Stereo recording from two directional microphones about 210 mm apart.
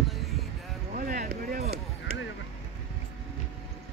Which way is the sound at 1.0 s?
40° right (ahead or behind).